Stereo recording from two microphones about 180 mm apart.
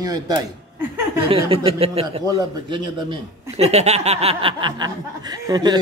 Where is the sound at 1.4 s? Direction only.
30° right (ahead or behind).